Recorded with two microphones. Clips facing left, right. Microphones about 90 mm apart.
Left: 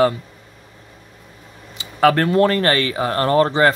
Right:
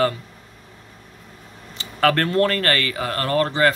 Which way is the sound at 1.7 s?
15° left (ahead or behind).